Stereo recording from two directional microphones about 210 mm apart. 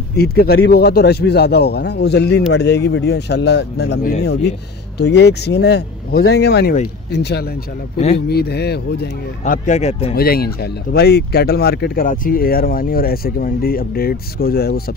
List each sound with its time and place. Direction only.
0.1 s speech: 50° left (ahead or behind)
9.4 s speech: 35° left (ahead or behind)
10.1 s speech: 45° left (ahead or behind)